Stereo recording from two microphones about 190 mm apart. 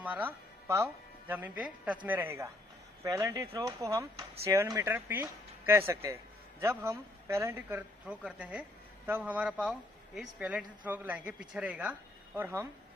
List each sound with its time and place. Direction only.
0.0 s speech: 10° right (ahead or behind)